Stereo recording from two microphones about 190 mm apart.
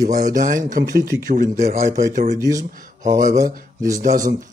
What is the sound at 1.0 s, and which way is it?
Speech, 15° right (ahead or behind).